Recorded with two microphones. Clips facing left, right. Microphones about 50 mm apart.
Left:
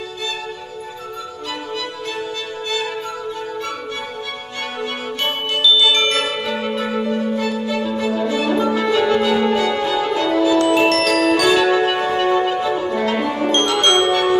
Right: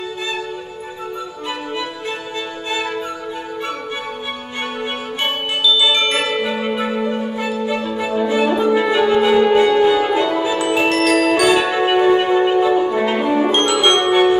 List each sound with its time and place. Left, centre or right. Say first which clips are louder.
1.5 s music: right 2 dB; right
5.2 s glockenspiel: even; centre